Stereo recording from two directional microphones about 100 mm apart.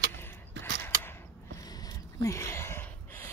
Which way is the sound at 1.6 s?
40° left (ahead or behind).